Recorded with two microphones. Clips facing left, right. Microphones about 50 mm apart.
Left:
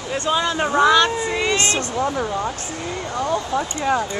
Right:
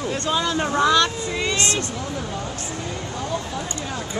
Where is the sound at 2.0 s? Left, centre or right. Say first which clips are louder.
Left 7 dB; left.